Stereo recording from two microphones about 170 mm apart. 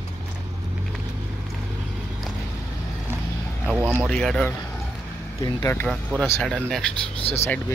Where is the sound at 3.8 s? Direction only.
10° right (ahead or behind).